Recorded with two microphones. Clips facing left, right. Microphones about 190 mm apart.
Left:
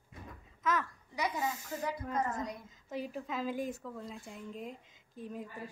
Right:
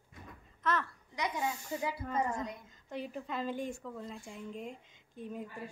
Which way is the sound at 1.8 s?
5° right (ahead or behind).